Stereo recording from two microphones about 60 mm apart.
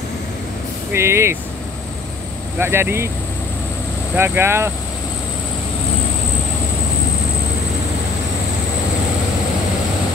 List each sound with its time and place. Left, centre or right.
0.9 s speech: right
2.6 s speech: right
4.2 s speech: right